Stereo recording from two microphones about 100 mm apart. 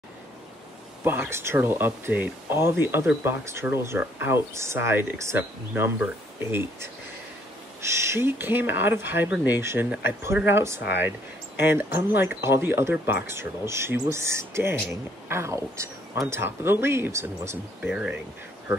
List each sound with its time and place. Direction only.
1.0 s speech: 20° right (ahead or behind)